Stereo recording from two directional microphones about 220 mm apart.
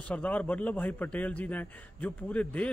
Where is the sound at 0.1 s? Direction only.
5° left (ahead or behind).